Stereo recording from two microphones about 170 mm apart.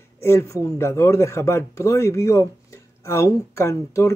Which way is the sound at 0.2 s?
15° left (ahead or behind).